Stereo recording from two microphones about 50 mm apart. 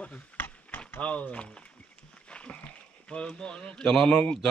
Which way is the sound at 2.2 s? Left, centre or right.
Left.